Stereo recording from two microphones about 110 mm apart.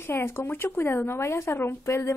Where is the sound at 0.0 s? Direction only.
20° left (ahead or behind).